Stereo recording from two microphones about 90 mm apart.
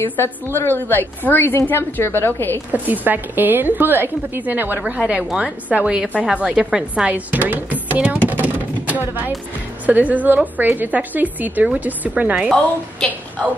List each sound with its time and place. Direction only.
0.2 s a woman's voice: 25° left (ahead or behind)
2.7 s a woman's voice: 20° right (ahead or behind)